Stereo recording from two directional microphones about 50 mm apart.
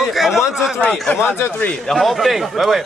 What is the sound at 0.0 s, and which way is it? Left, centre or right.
Speech, centre.